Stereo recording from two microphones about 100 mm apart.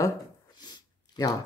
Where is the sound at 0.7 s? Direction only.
45° left (ahead or behind).